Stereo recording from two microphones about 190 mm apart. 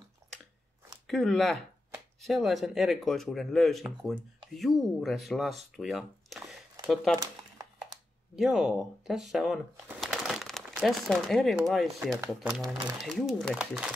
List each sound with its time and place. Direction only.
1.0 s speech: centre (ahead or behind)
7.2 s crumpling: 20° right (ahead or behind)
8.4 s speech: centre (ahead or behind)